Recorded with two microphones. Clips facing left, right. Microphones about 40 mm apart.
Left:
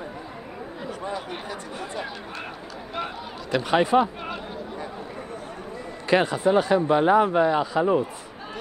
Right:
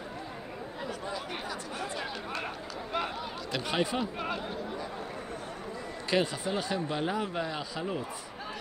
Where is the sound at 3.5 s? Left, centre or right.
Left.